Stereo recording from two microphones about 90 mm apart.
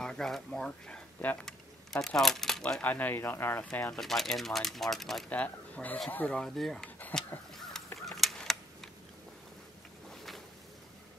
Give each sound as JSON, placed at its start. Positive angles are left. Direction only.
{"t": 0.0, "sound": "speech", "side_deg": 5}
{"t": 2.8, "sound": "speech", "side_deg": 20}
{"t": 3.9, "sound": "speech", "side_deg": 5}
{"t": 5.3, "sound": "speech", "side_deg": 15}
{"t": 7.1, "sound": "a sound", "side_deg": 10}